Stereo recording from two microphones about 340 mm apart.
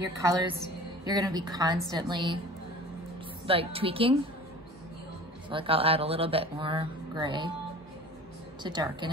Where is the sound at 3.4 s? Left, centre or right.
Centre.